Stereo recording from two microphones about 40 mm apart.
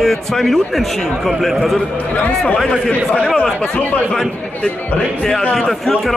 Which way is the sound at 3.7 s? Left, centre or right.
Left.